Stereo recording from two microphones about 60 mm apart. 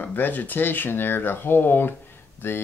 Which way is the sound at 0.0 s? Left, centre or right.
Left.